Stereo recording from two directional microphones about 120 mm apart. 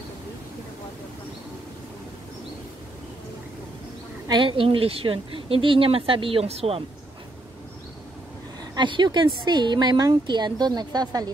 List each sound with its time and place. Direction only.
4.3 s speech: 45° right (ahead or behind)
8.7 s speech: 40° right (ahead or behind)